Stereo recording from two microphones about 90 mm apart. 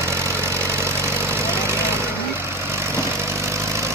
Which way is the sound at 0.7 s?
30° right (ahead or behind).